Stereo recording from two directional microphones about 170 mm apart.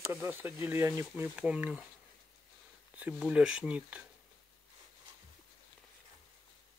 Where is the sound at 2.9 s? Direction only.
10° right (ahead or behind).